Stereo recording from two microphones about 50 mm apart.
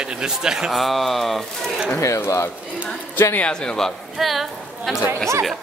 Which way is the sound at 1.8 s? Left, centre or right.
Left.